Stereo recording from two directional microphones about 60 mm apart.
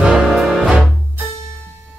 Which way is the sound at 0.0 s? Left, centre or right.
Centre.